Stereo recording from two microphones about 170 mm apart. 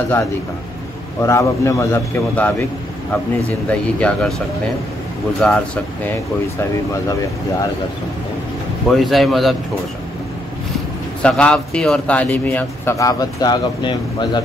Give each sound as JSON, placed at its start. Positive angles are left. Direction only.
{"t": 1.2, "sound": "a man's voice", "side_deg": 15}
{"t": 5.4, "sound": "a man's voice", "side_deg": 5}
{"t": 8.8, "sound": "a man's voice", "side_deg": 0}
{"t": 11.2, "sound": "a man's voice", "side_deg": 5}